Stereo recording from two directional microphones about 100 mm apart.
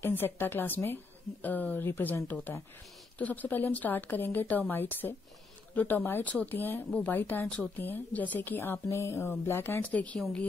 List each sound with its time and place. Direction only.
0.0 s a woman's voice: 20° left (ahead or behind)
7.4 s a woman's voice: 10° left (ahead or behind)
7.7 s a woman's voice: 20° left (ahead or behind)